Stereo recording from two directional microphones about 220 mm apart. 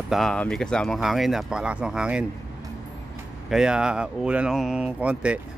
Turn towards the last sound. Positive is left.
turn(degrees=-5)  # may be behind; listen again after turning